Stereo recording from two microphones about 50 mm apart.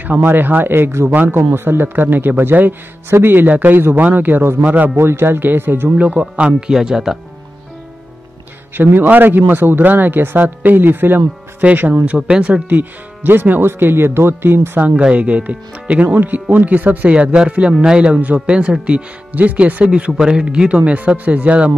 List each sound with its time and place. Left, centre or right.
0.0 s a man's voice: right
0.7 s a man's voice: right
3.4 s a man's voice: right
4.9 s a man's voice: right
5.9 s speech: right
6.7 s speech: centre
8.7 s a man's voice: right
12.3 s speech: right
12.6 s speech: right
13.3 s a man's voice: right
15.1 s a man's voice: right
17.1 s speech: right
20.1 s speech: centre